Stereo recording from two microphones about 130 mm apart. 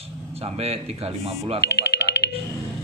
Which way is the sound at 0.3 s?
50° right (ahead or behind).